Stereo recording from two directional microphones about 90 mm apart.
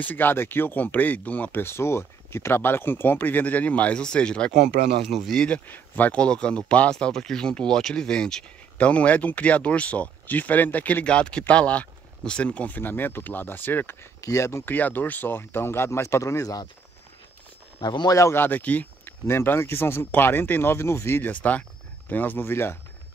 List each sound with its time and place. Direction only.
0.0 s speech: 20° left (ahead or behind)
5.7 s speech: 20° left (ahead or behind)
14.2 s speech: 35° left (ahead or behind)
14.6 s speech: 20° left (ahead or behind); by 16.6 s 40° left (ahead or behind)
17.7 s speech: 55° left (ahead or behind)
18.3 s speech: 20° left (ahead or behind)
21.2 s speech: 15° left (ahead or behind)